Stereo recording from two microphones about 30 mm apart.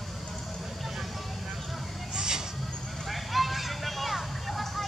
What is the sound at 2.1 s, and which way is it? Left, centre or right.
Vehicle, right.